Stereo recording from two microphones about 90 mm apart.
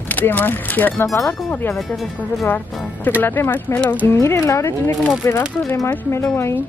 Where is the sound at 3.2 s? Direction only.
25° left (ahead or behind).